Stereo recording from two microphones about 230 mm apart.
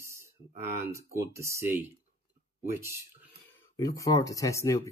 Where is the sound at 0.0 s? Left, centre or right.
Centre.